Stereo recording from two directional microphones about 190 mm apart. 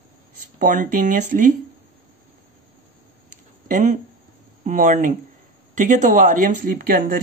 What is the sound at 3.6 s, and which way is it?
A woman's voice, 40° right (ahead or behind).